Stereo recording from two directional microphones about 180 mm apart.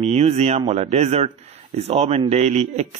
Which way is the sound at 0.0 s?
35° right (ahead or behind).